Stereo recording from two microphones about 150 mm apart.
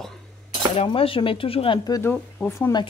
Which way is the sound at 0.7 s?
40° left (ahead or behind).